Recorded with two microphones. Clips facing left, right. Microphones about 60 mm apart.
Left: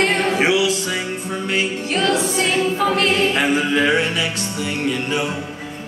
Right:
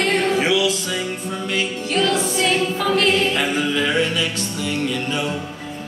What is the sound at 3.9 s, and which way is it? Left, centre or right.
Music, left.